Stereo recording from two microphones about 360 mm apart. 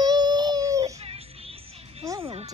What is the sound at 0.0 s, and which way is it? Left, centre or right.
Music, centre.